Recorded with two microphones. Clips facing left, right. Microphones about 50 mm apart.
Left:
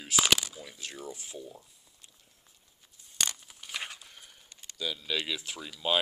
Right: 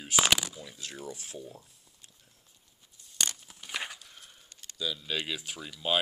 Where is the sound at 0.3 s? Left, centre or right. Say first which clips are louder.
Even; centre.